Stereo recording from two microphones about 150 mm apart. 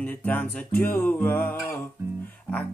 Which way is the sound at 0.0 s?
10° left (ahead or behind).